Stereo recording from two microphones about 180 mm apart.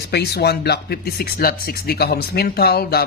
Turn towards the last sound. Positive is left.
turn(degrees=60)  # may be behind; listen again after turning